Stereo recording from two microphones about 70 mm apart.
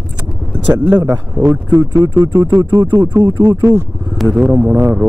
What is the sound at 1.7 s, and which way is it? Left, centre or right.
Speech, right.